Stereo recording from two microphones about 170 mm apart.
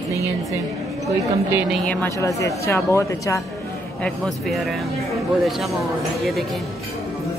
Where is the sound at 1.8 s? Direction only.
10° left (ahead or behind).